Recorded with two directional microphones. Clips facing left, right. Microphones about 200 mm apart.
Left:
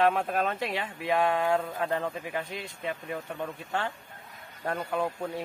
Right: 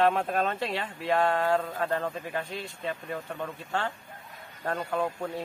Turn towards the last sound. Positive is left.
turn(degrees=10)  # may be behind; listen again after turning